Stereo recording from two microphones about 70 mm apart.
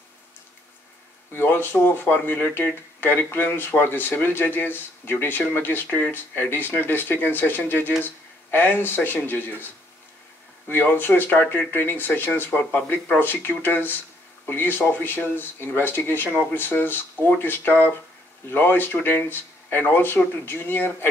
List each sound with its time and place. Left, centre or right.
1.3 s speech: left
10.7 s speech: left